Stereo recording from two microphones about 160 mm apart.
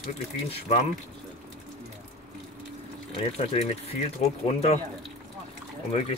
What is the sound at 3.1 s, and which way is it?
Speech, 40° left (ahead or behind).